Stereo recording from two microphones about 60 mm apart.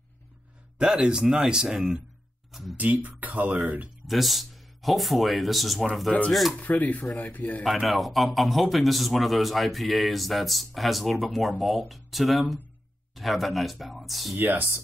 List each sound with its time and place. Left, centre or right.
0.7 s speech: centre
2.5 s a man's voice: centre
2.8 s speech: right
4.1 s a man's voice: centre
6.6 s speech: left
7.8 s a man's voice: centre
14.3 s speech: right